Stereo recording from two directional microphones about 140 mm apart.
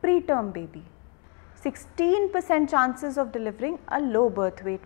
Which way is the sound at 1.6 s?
20° left (ahead or behind).